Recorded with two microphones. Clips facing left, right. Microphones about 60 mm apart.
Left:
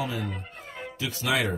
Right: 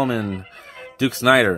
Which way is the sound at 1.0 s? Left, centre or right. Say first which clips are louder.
Right 12 dB; right.